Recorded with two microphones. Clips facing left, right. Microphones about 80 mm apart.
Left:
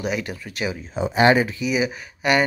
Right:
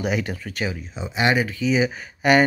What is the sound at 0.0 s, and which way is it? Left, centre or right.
Speech, centre.